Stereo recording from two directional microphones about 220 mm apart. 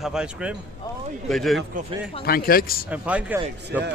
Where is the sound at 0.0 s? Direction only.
5° right (ahead or behind).